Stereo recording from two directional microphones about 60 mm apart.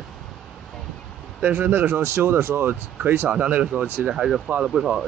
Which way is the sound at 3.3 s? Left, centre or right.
Right.